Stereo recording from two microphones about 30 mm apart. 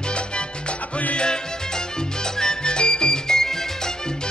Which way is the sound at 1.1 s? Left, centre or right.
Left.